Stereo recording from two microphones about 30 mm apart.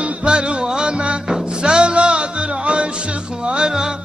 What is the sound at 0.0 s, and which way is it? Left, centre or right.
Music, right.